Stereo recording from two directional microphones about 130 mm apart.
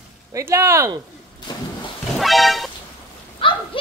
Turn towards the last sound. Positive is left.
turn(degrees=40)  # may be behind; listen again after turning